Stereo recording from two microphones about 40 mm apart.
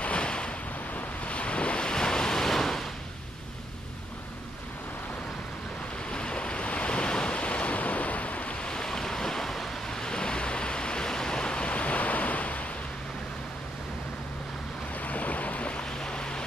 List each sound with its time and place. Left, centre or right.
0.0 s ocean: left
0.9 s waves: left; by 2.9 s centre
6.0 s waves: left
8.6 s waves: centre; by 12.6 s left
15.0 s boat: left
15.8 s boat: centre